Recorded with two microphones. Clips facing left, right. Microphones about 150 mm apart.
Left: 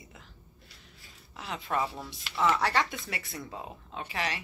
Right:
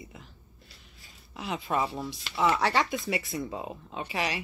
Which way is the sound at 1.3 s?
15° right (ahead or behind).